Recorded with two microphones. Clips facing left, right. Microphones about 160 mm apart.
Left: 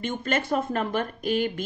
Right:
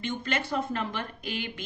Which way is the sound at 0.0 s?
45° left (ahead or behind).